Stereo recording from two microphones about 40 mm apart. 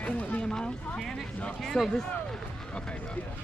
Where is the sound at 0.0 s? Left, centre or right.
Left.